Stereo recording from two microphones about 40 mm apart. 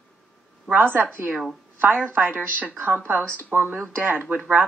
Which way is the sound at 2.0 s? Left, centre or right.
Right.